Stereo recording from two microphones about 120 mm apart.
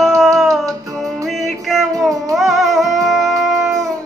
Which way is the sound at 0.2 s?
Centre (ahead or behind).